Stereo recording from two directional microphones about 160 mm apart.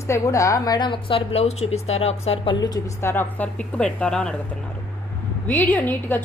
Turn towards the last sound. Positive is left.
turn(degrees=10)  # may be behind; listen again after turning